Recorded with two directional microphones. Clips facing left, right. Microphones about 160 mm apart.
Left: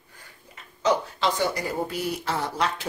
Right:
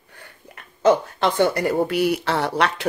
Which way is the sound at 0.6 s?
55° right (ahead or behind).